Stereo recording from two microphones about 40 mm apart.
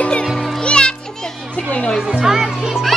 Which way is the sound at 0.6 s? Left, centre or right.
Left.